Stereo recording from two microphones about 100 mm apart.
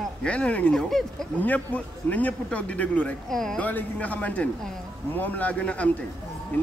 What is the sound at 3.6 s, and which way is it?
A man's voice, 15° left (ahead or behind).